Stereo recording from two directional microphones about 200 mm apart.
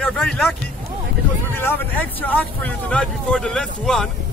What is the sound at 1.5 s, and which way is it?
Speech, 10° left (ahead or behind).